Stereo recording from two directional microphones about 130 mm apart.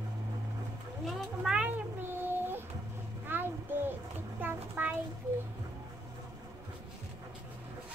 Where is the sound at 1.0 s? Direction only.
Centre (ahead or behind).